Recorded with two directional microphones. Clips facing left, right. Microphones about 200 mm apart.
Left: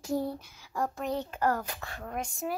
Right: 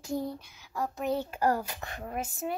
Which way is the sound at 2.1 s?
5° right (ahead or behind).